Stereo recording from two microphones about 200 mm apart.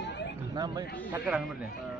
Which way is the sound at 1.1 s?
5° right (ahead or behind).